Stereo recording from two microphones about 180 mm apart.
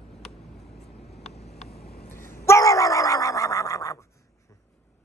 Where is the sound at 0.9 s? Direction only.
65° left (ahead or behind).